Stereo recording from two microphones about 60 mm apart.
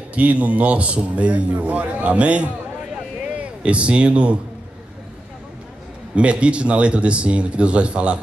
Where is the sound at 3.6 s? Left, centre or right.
Centre.